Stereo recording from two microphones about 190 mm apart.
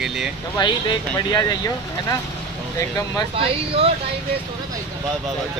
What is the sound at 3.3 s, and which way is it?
Speech, 30° right (ahead or behind).